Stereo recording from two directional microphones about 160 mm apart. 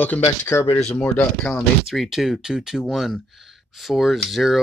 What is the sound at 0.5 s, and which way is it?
Speech, 15° left (ahead or behind).